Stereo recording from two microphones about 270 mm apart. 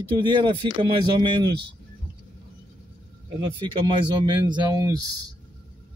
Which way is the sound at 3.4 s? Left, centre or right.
Centre.